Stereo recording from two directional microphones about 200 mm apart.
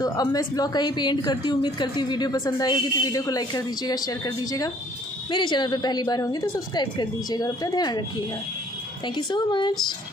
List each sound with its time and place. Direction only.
0.0 s a woman's voice: 20° left (ahead or behind)
9.0 s a woman's voice: 20° left (ahead or behind)